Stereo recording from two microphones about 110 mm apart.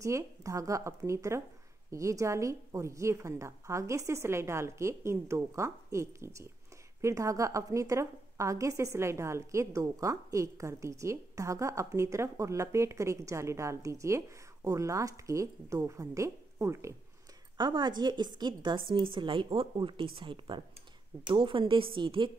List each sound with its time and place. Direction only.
0.0 s a woman's voice: 30° right (ahead or behind)
17.6 s a woman's voice: 40° right (ahead or behind)